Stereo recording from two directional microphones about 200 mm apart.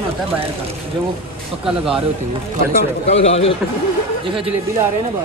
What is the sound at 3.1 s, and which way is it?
Speech, 30° left (ahead or behind).